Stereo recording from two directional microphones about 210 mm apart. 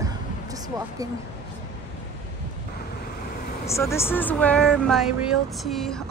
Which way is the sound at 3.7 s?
15° left (ahead or behind).